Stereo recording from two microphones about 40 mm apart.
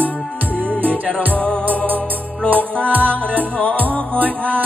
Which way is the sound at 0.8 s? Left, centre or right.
Right.